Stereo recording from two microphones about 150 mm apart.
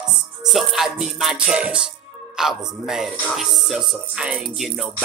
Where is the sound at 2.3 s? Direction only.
5° right (ahead or behind).